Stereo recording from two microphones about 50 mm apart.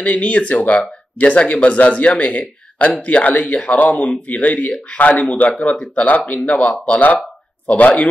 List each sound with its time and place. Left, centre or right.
0.0 s speech: left